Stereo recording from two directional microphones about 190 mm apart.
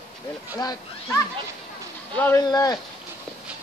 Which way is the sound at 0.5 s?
20° left (ahead or behind).